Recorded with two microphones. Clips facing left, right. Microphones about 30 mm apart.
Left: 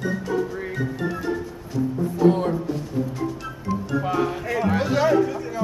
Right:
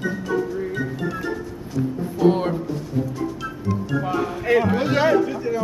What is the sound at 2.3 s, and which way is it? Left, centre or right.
Speech, right.